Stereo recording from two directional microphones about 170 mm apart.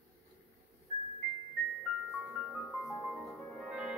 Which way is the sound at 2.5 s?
Centre (ahead or behind).